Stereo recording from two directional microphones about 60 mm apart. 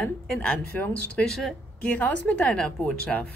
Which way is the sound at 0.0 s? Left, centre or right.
Centre.